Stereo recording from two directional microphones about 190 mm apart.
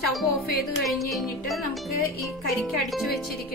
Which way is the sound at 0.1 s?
Centre (ahead or behind).